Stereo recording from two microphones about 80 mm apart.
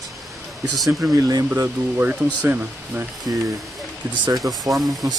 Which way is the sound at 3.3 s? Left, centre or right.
Right.